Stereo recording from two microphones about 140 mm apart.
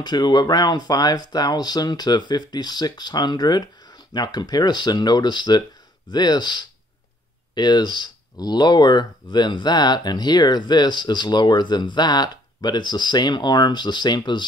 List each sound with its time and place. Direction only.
0.0 s speech: 30° left (ahead or behind)